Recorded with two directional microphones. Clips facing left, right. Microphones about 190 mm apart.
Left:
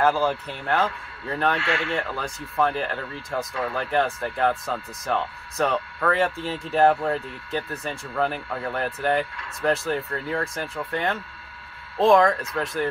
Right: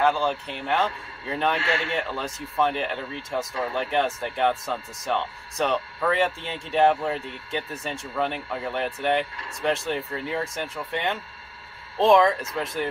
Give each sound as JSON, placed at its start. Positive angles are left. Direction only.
{"t": 0.0, "sound": "speech", "side_deg": 5}
{"t": 1.6, "sound": "speech", "side_deg": -25}
{"t": 2.0, "sound": "speech", "side_deg": 0}